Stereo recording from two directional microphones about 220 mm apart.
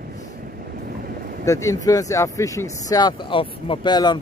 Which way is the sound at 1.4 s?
15° left (ahead or behind).